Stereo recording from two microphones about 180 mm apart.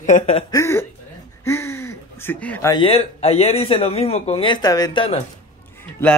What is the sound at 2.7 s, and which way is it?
Speech, 30° left (ahead or behind).